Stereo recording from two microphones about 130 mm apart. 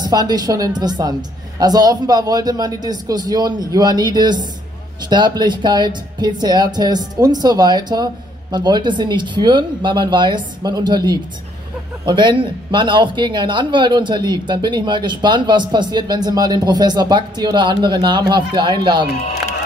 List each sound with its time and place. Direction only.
0.0 s speech: 30° right (ahead or behind)